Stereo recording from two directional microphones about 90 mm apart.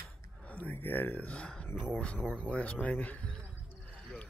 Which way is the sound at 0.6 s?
20° left (ahead or behind).